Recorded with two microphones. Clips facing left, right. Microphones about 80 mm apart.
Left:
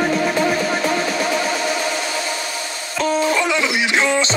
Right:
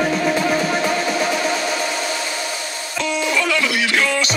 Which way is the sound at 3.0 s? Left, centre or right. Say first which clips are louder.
Left 4 dB; left.